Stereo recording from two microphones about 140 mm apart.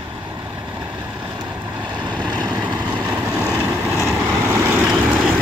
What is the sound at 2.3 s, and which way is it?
Vehicle, 30° right (ahead or behind).